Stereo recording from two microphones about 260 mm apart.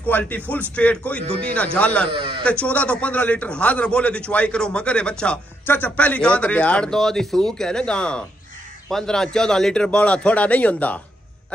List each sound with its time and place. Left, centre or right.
0.0 s a man's voice: centre
2.1 s speech: centre
2.4 s a man's voice: centre